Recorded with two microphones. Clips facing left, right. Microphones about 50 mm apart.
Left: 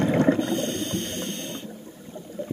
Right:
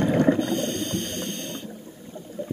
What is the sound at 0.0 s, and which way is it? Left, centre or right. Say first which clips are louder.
Snort: even; centre.